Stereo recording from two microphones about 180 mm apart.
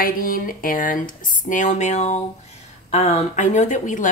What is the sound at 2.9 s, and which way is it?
Speech, 35° left (ahead or behind).